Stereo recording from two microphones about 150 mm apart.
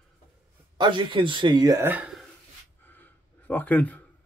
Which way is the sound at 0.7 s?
30° right (ahead or behind).